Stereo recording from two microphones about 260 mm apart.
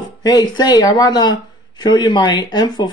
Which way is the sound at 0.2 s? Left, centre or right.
Centre.